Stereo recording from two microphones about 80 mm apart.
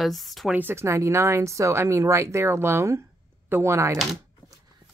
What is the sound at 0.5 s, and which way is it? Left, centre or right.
Speech, right.